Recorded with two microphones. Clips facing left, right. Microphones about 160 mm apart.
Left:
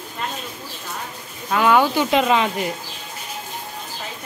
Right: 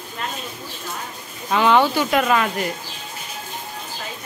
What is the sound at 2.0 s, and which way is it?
Speech, 20° left (ahead or behind).